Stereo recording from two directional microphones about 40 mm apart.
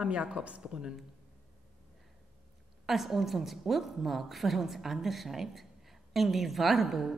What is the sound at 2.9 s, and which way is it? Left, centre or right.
A woman's voice, centre.